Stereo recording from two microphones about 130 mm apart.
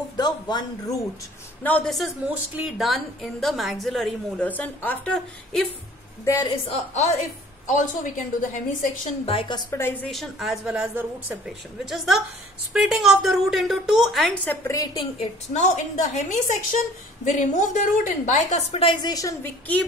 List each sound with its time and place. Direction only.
0.2 s speech: 35° left (ahead or behind)
1.6 s a woman's voice: 10° left (ahead or behind)
2.2 s a woman's voice: 10° right (ahead or behind)
4.5 s a woman's voice: 15° left (ahead or behind)
6.5 s a woman's voice: 55° left (ahead or behind)
7.6 s a woman's voice: 75° left (ahead or behind)
9.2 s a woman's voice: 45° left (ahead or behind)
9.7 s a woman's voice: 20° left (ahead or behind)
10.1 s a woman's voice: centre (ahead or behind)
14.4 s a woman's voice: 15° left (ahead or behind)
15.5 s a woman's voice: 65° left (ahead or behind)
18.8 s speech: 40° left (ahead or behind)